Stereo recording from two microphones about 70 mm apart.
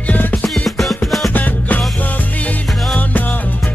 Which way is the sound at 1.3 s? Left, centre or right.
Left.